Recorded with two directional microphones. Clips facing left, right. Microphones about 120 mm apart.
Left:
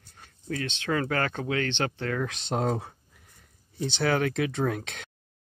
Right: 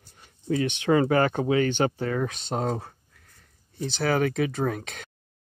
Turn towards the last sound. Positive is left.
turn(degrees=0)  # may be behind; listen again after turning